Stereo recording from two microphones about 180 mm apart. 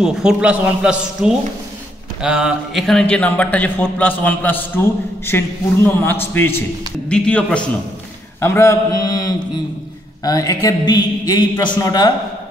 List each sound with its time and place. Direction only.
0.0 s a man's voice: 5° right (ahead or behind); by 12.1 s 20° left (ahead or behind)